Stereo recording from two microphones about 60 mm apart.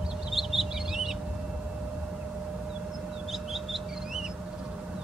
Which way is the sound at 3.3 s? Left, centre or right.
Centre.